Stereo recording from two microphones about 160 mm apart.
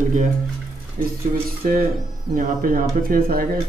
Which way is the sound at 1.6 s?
60° right (ahead or behind).